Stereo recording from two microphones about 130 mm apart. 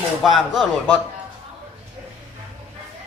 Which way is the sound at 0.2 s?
Centre (ahead or behind).